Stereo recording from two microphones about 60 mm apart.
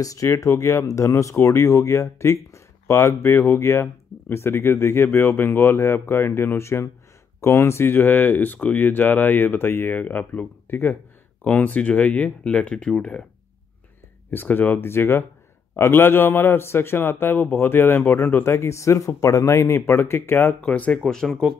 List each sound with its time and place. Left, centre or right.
0.0 s a man's voice: left
7.9 s speech: left; by 13.2 s centre
14.3 s a man's voice: left
20.6 s speech: left
21.0 s speech: centre